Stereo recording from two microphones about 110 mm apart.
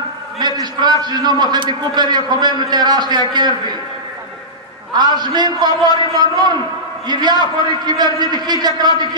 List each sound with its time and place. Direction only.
0.4 s a man's voice: 40° right (ahead or behind)
4.9 s a man's voice: 40° right (ahead or behind)